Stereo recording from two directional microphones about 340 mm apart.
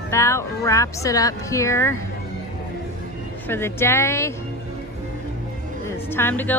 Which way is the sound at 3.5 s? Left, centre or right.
Centre.